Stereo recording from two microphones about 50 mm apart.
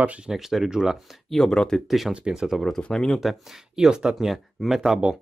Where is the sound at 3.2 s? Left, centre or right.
Centre.